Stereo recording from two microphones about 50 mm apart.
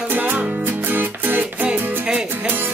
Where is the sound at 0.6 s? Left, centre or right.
Right.